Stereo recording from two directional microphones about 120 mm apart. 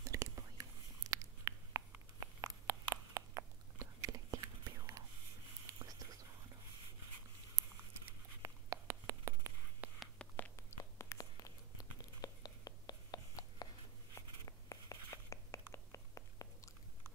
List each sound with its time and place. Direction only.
0.0 s whispering: 25° right (ahead or behind)
1.1 s a sound: 30° right (ahead or behind)
5.8 s whispering: 30° right (ahead or behind)
8.4 s writing: 30° right (ahead or behind)
9.8 s whispering: 10° right (ahead or behind)
10.1 s whispering: 10° left (ahead or behind)
10.5 s a sound: 25° left (ahead or behind)
14.1 s whispering: 30° left (ahead or behind)